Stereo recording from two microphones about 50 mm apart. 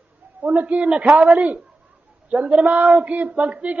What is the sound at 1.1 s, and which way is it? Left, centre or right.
A man's voice, right.